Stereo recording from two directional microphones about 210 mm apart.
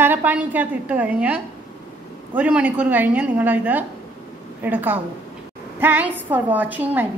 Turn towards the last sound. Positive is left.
turn(degrees=-10)  # may be behind; listen again after turning